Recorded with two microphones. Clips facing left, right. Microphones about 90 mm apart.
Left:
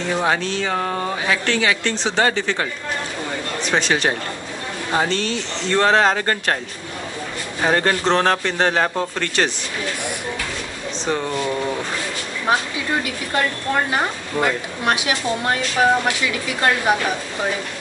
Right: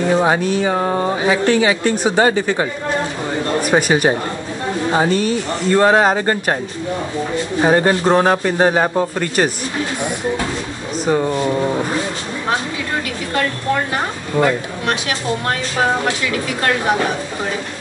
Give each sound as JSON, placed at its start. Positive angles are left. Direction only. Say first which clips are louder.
{"t": 0.1, "sound": "speech", "louder": "right 4 dB", "side_deg": -20}
{"t": 3.7, "sound": "speech", "louder": "right 4 dB", "side_deg": -10}
{"t": 7.6, "sound": "speech", "louder": "right 4 dB", "side_deg": -15}
{"t": 11.1, "sound": "speech", "louder": "right 5 dB", "side_deg": -15}
{"t": 14.3, "sound": "speech", "louder": "right 5 dB", "side_deg": -25}
{"t": 15.8, "sound": "speech", "louder": "left 1 dB", "side_deg": -30}